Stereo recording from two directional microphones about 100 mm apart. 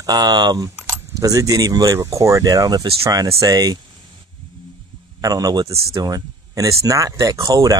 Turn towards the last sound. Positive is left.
turn(degrees=-40)  # may be behind; listen again after turning